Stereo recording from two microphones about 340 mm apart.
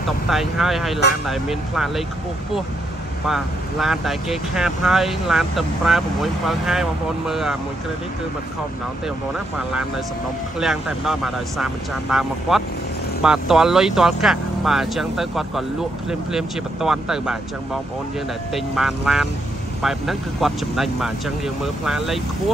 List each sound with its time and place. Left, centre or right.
0.3 s speech: centre
3.3 s speech: centre
10.6 s speech: centre
18.5 s speech: centre